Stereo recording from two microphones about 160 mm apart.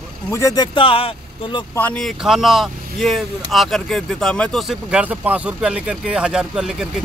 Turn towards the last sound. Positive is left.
turn(degrees=-5)  # may be behind; listen again after turning